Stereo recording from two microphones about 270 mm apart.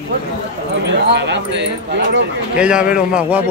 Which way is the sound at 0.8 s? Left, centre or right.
Right.